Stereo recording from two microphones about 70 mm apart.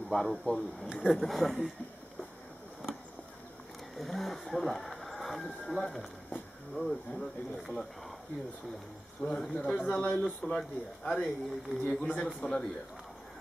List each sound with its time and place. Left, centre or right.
0.1 s speech: centre
3.9 s speech: centre
9.3 s speech: centre